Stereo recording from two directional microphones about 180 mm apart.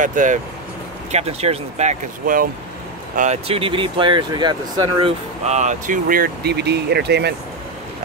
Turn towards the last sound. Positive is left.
turn(degrees=-65)  # may be behind; listen again after turning